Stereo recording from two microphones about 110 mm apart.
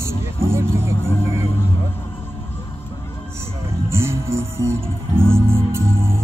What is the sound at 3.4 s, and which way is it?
Music, 25° right (ahead or behind).